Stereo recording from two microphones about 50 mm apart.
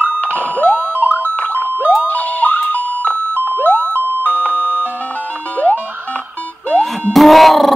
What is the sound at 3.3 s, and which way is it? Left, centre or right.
Music, right.